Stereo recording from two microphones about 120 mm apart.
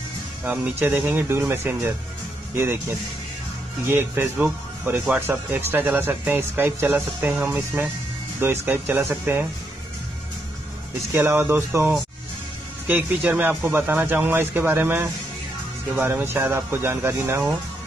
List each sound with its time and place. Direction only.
0.5 s speech: 15° right (ahead or behind)
3.8 s speech: 20° right (ahead or behind)
11.1 s speech: 20° right (ahead or behind)